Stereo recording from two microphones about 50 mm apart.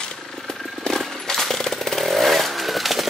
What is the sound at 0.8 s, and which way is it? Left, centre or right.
Chainsaw, centre.